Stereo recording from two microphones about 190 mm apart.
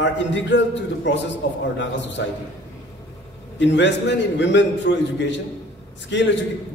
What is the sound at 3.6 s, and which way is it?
A man's voice, 70° left (ahead or behind).